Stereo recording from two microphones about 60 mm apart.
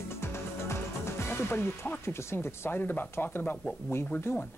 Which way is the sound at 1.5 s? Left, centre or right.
Left.